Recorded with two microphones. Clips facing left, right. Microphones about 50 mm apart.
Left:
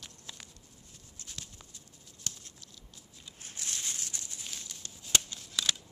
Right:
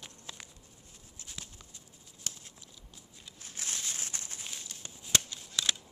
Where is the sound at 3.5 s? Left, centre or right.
Right.